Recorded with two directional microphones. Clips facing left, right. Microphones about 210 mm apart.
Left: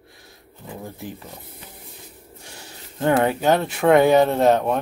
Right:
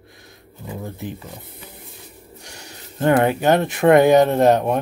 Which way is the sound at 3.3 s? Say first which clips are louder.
Right 2 dB; 15° right (ahead or behind).